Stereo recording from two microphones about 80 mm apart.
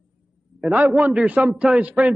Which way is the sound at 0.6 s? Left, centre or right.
Right.